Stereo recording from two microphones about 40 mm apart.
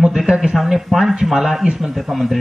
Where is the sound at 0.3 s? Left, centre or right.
Centre.